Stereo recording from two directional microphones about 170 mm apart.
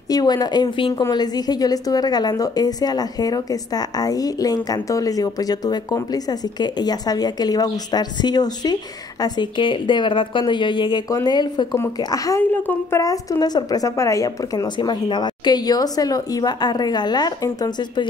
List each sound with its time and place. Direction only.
0.1 s a woman's voice: 25° left (ahead or behind)